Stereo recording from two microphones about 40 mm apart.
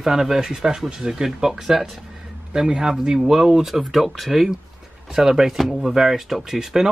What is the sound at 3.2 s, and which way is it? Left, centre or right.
Speech, centre.